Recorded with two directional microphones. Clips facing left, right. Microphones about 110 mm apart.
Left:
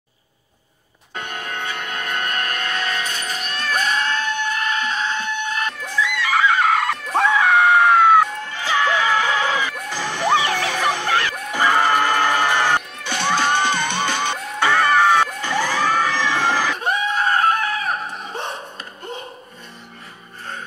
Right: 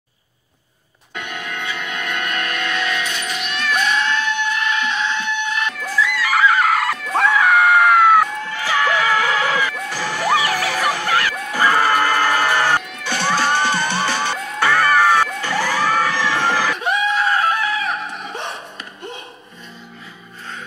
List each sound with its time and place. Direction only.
1.1 s music: 40° left (ahead or behind)
6.2 s screaming: 25° left (ahead or behind)
8.5 s music: 20° left (ahead or behind)
14.7 s children shouting: 25° left (ahead or behind)
16.7 s screaming: 45° left (ahead or behind)